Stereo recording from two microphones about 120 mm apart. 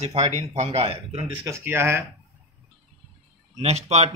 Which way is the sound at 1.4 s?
20° right (ahead or behind).